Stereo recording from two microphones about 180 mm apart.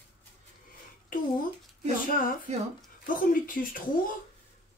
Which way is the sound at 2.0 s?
50° left (ahead or behind).